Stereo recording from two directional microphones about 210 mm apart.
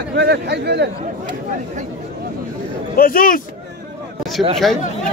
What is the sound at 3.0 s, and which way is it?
Speech, 45° left (ahead or behind).